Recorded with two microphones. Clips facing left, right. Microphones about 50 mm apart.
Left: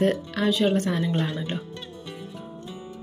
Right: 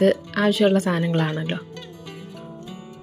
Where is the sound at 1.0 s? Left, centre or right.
Right.